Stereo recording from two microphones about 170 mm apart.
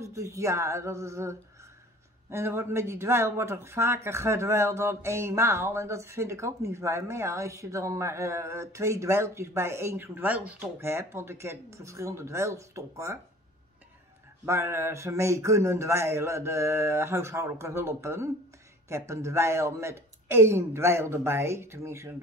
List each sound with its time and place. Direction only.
0.0 s speech: 15° right (ahead or behind)
14.4 s speech: 15° right (ahead or behind)